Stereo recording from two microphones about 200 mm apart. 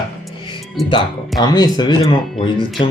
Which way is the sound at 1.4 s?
20° left (ahead or behind).